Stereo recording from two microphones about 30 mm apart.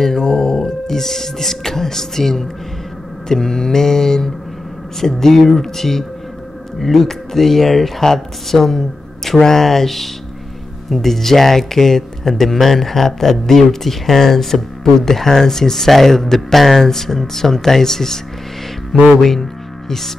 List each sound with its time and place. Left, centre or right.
0.0 s music: centre
3.3 s speech: centre